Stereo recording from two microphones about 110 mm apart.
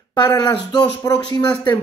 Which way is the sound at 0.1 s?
45° left (ahead or behind).